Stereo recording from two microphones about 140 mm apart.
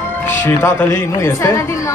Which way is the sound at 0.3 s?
15° left (ahead or behind).